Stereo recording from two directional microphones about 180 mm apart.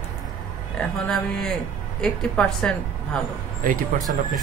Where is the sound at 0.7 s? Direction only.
5° left (ahead or behind).